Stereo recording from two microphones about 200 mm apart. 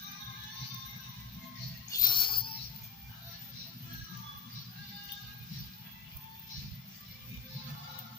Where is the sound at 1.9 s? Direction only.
20° left (ahead or behind).